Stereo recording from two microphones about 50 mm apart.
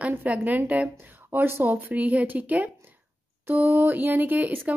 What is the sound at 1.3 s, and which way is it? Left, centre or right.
Speech, right.